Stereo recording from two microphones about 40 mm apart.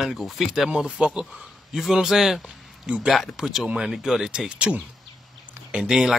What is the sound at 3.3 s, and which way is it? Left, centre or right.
Speech, centre.